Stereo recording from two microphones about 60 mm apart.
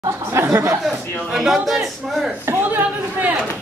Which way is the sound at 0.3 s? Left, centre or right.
Right.